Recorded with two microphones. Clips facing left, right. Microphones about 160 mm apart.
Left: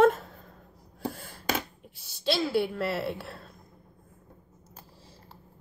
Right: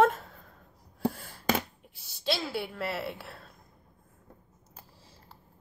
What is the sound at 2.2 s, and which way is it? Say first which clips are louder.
A woman's voice: left 6 dB; 25° left (ahead or behind).